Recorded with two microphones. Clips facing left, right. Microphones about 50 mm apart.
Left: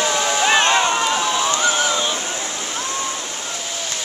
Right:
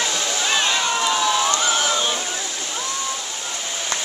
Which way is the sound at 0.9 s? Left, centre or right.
Left.